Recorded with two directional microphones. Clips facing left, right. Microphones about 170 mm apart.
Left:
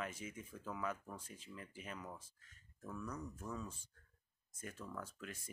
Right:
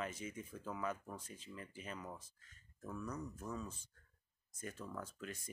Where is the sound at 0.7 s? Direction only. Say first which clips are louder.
Right 1 dB; 5° right (ahead or behind).